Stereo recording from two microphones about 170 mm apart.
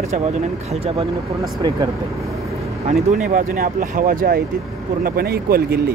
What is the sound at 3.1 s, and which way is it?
Speech, 50° right (ahead or behind).